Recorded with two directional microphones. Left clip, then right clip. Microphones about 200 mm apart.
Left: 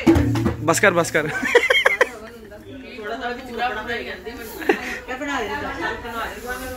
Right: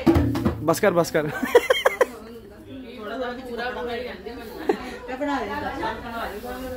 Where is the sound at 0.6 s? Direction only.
10° right (ahead or behind).